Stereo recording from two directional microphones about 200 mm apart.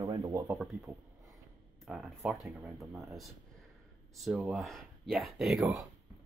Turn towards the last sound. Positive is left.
turn(degrees=0)  # may be behind; listen again after turning